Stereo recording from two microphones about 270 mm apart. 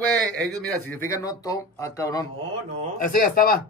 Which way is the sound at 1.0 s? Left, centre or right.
Centre.